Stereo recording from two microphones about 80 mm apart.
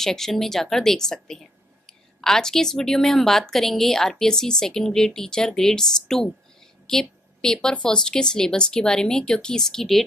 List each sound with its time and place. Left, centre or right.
0.0 s a woman's voice: centre